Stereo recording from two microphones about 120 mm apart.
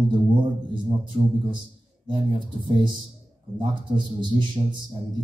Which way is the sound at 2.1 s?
40° right (ahead or behind).